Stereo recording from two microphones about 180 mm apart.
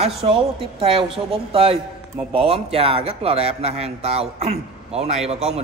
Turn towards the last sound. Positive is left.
turn(degrees=-35)  # may be behind; listen again after turning